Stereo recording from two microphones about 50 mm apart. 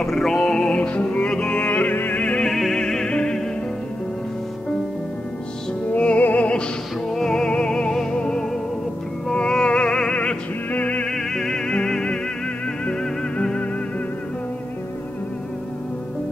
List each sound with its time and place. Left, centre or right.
0.0 s music: centre
1.6 s music: left
2.7 s music: centre
5.9 s music: left
7.1 s music: centre
9.3 s opera: centre
11.1 s music: centre